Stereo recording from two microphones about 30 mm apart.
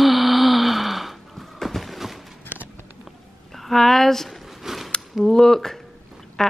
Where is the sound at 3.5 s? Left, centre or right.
Centre.